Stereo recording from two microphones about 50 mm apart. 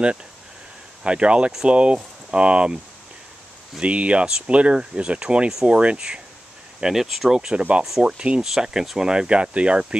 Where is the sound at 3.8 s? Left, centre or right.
Right; by 7.5 s centre.